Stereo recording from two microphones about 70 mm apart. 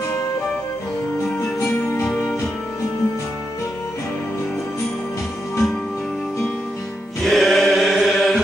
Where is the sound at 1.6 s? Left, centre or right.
Left.